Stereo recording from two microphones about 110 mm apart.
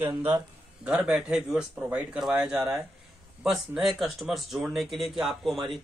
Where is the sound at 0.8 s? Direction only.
5° right (ahead or behind).